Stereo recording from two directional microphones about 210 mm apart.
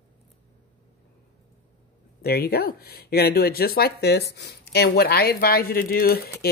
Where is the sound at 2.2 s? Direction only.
50° left (ahead or behind).